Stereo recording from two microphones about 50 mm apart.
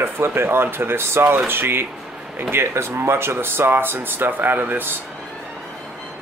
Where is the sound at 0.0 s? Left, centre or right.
Right.